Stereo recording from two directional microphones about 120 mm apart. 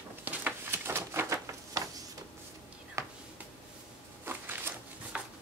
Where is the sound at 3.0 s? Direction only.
25° right (ahead or behind).